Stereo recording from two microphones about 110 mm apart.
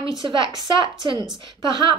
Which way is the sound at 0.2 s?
50° right (ahead or behind).